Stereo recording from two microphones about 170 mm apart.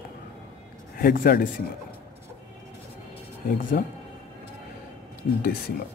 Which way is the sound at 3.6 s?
55° left (ahead or behind).